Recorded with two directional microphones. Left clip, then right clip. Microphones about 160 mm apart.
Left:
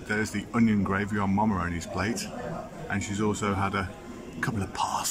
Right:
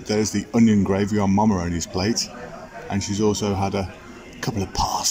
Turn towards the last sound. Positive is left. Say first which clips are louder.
# right 6 dB
turn(degrees=-25)  # may be behind; listen again after turning